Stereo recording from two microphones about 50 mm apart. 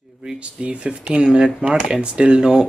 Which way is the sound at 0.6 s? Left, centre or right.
Right.